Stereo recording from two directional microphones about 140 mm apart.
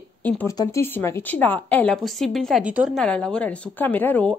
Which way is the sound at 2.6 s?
10° right (ahead or behind).